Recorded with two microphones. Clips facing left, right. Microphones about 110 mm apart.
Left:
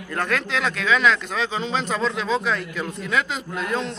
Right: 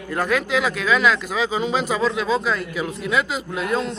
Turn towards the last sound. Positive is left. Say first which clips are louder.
# right 3 dB
turn(degrees=-5)  # may be behind; listen again after turning